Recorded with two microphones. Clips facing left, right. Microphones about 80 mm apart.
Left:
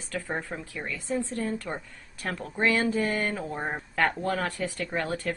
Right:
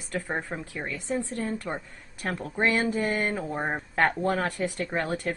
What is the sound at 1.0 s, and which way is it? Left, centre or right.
Speech, right.